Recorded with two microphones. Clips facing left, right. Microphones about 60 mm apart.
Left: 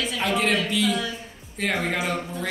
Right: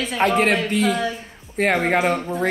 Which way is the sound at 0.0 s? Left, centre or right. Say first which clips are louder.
Right 6 dB; right.